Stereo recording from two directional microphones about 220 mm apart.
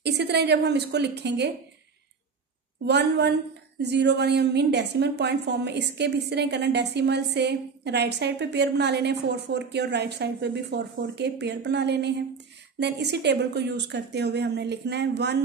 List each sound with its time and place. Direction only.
0.0 s a woman's voice: 50° right (ahead or behind)
2.8 s a woman's voice: 50° right (ahead or behind)